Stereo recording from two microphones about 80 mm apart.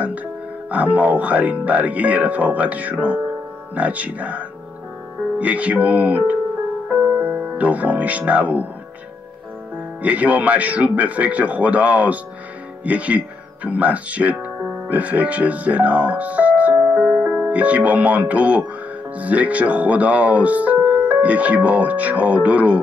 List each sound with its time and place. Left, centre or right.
0.7 s speech: centre
6.9 s music: centre
10.0 s speech: centre